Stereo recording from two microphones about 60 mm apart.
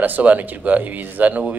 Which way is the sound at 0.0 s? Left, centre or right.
Right.